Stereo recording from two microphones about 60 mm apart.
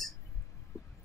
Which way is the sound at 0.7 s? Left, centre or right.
Left.